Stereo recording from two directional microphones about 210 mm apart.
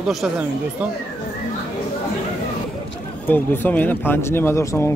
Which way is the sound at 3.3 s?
10° left (ahead or behind).